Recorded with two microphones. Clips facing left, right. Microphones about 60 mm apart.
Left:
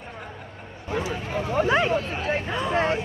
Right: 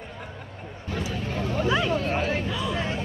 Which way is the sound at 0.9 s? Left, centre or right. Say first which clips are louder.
Left 3 dB; left.